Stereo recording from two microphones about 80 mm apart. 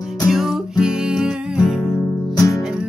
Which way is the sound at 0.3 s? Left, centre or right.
Centre.